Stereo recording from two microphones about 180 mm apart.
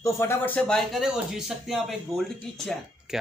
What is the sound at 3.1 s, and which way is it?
Speech, centre (ahead or behind).